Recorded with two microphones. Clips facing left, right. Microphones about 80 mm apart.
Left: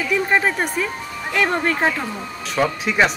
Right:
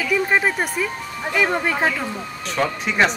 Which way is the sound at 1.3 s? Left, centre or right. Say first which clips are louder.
Left 1 dB; centre.